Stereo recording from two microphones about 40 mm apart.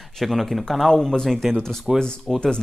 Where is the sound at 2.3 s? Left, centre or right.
Centre.